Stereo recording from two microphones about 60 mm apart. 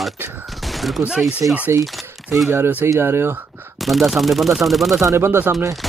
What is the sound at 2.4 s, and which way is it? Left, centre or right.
Speech, right.